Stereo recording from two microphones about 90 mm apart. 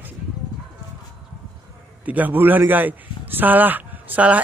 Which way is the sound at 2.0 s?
20° right (ahead or behind).